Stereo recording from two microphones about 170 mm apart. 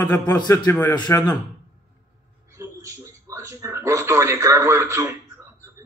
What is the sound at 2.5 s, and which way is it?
Speech, 15° right (ahead or behind).